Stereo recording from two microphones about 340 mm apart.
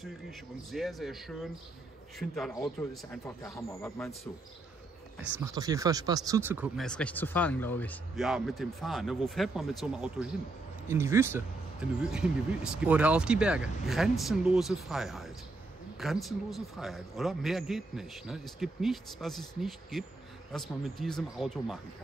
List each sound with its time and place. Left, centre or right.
0.0 s speech: centre
5.4 s speech: centre